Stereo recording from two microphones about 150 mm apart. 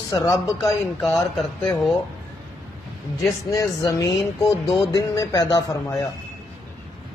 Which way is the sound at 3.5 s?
25° left (ahead or behind).